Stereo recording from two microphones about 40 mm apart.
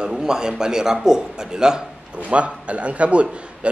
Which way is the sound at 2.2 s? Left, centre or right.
Right.